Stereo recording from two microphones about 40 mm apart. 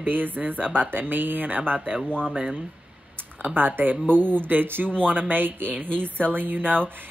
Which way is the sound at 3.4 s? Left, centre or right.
Right.